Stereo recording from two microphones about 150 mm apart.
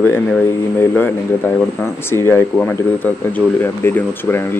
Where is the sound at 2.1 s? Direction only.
15° left (ahead or behind).